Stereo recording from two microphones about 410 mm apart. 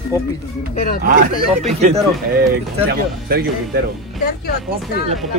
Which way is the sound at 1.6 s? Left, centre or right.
Centre.